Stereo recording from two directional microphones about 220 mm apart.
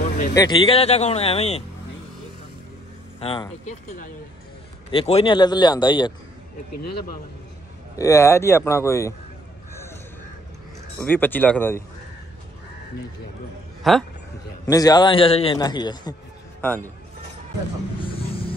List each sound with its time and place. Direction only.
0.3 s a man's voice: 20° left (ahead or behind)
3.2 s speech: 25° left (ahead or behind)
4.9 s a man's voice: 25° left (ahead or behind)
7.9 s a man's voice: 15° left (ahead or behind)
11.0 s a man's voice: 10° left (ahead or behind)
13.9 s speech: centre (ahead or behind)
14.7 s a man's voice: 15° left (ahead or behind)
16.6 s a man's voice: 10° left (ahead or behind)
18.0 s a sound: 25° left (ahead or behind)